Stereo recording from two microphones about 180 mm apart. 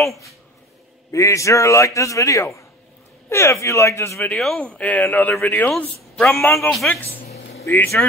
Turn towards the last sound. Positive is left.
turn(degrees=15)  # may be behind; listen again after turning